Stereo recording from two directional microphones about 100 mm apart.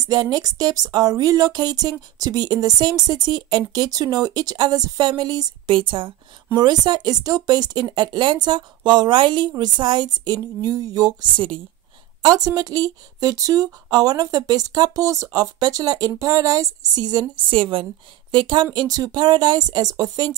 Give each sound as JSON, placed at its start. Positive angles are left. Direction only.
{"t": 0.0, "sound": "speech", "side_deg": -40}
{"t": 5.7, "sound": "a woman's voice", "side_deg": -60}
{"t": 6.5, "sound": "speech", "side_deg": -45}
{"t": 12.2, "sound": "speech", "side_deg": -40}
{"t": 18.3, "sound": "speech", "side_deg": -50}